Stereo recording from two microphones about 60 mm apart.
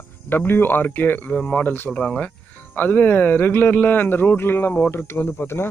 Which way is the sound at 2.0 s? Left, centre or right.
Centre.